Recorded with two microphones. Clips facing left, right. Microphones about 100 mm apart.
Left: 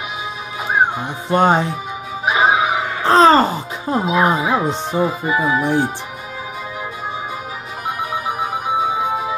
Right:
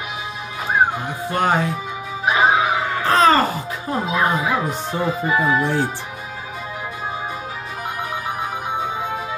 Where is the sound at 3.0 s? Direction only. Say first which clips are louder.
Left 4 dB; 25° left (ahead or behind).